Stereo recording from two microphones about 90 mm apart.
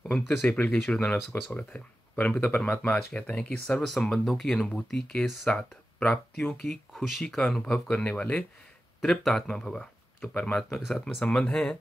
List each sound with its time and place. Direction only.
0.0 s speech: centre (ahead or behind)
0.4 s speech: 20° left (ahead or behind)
0.7 s speech: 10° left (ahead or behind)
1.6 s speech: 20° left (ahead or behind)
3.8 s speech: centre (ahead or behind)
9.0 s speech: 5° left (ahead or behind)